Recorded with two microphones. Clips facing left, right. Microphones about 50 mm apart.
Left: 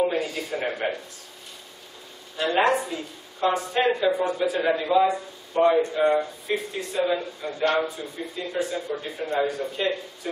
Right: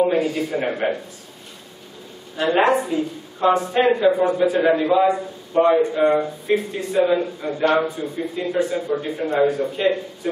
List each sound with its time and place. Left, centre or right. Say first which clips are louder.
0.0 s a man's voice: right 6 dB; centre
2.3 s a woman's voice: right 4 dB; centre